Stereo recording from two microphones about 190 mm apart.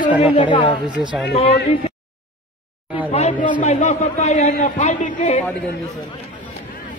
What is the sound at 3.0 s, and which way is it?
A man's voice, 30° left (ahead or behind).